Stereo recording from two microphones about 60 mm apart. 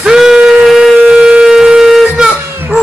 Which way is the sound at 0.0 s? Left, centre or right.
Centre.